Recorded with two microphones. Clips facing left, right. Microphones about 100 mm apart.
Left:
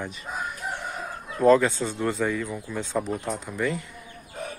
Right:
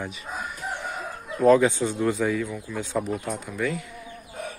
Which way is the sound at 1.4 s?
10° right (ahead or behind).